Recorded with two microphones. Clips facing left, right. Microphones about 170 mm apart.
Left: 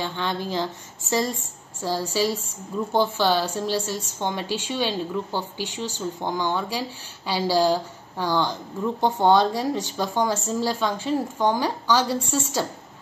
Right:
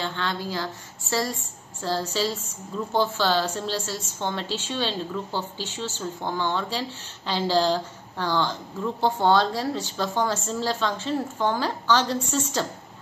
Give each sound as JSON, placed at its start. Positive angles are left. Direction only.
{"t": 0.0, "sound": "a woman's voice", "side_deg": 15}
{"t": 1.8, "sound": "a woman's voice", "side_deg": 10}